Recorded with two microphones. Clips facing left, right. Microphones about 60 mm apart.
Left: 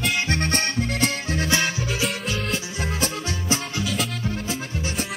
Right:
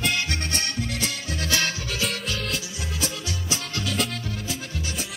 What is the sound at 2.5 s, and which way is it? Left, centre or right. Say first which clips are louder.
Music: left 4 dB; left.